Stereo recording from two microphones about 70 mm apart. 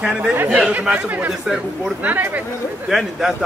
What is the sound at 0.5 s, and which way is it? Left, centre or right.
A man's voice, centre.